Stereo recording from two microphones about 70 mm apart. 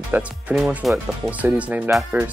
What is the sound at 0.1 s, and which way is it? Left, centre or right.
Speech, right.